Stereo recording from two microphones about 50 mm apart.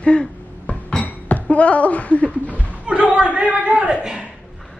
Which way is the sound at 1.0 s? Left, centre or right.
Left.